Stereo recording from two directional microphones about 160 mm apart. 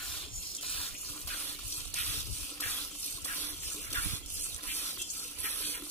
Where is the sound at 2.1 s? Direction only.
15° left (ahead or behind).